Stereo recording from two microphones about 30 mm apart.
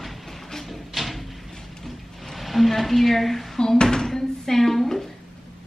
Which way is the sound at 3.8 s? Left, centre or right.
Left.